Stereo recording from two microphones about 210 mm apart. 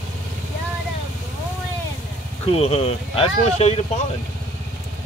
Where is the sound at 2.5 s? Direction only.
25° left (ahead or behind).